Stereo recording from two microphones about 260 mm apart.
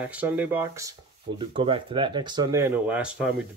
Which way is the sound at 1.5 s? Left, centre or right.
Right.